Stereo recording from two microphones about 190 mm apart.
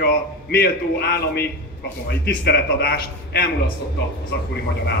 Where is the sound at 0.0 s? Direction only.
55° left (ahead or behind).